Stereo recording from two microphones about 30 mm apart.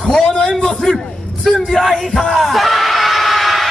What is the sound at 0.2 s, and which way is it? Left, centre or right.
Speech, centre.